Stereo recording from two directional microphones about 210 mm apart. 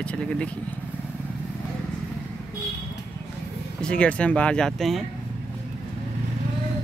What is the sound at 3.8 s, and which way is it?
Speech, 5° left (ahead or behind).